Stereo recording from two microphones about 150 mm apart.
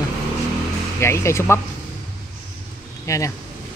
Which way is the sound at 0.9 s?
20° left (ahead or behind).